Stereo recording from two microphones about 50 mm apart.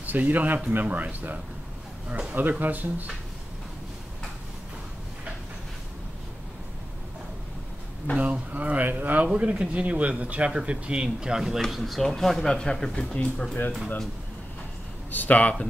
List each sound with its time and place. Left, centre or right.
0.0 s speech: right
8.2 s speech: right
9.2 s speech: right; by 13.5 s left
15.0 s speech: left